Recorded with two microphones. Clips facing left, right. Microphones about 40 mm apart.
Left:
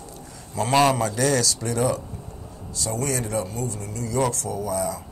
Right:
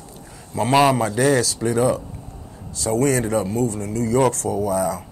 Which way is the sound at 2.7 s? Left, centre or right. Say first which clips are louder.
Right 8 dB; right.